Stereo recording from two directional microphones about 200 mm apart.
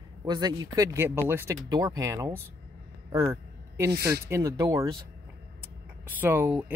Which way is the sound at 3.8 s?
55° right (ahead or behind).